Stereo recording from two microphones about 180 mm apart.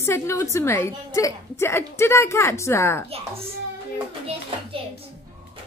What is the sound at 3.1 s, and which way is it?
Speech, 35° right (ahead or behind).